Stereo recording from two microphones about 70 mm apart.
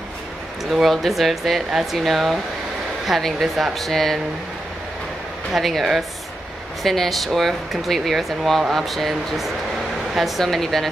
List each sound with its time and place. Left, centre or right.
0.7 s speech: centre
5.5 s speech: centre